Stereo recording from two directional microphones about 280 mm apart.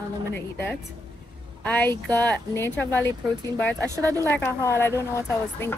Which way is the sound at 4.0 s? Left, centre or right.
Centre.